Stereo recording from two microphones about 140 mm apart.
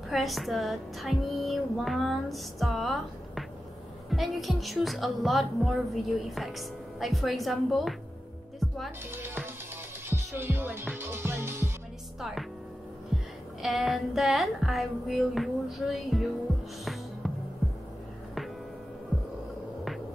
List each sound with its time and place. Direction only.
0.1 s music: centre (ahead or behind)
9.1 s speech: 15° right (ahead or behind)
10.0 s music: 15° right (ahead or behind)
13.1 s music: centre (ahead or behind)